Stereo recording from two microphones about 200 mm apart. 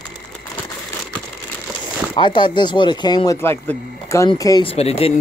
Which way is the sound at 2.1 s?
25° left (ahead or behind).